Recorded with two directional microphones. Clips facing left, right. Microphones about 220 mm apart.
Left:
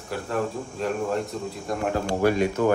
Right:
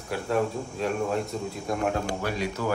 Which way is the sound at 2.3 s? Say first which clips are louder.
Left 10 dB; 50° left (ahead or behind).